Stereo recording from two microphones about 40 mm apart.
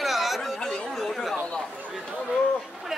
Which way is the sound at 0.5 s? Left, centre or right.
Centre.